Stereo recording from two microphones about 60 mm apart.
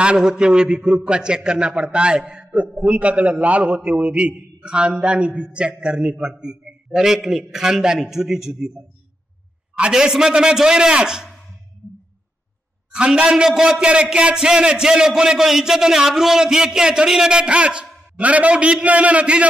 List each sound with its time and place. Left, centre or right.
0.0 s a man's voice: centre
9.9 s a man's voice: centre
12.9 s a man's voice: centre